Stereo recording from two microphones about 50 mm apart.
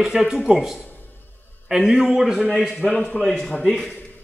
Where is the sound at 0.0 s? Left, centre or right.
Centre.